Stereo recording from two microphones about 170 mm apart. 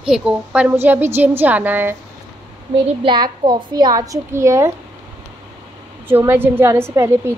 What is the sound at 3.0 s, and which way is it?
A child's voice, 25° right (ahead or behind).